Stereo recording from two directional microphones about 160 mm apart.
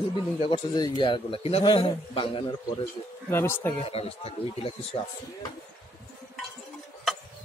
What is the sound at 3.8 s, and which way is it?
Speech, 35° left (ahead or behind).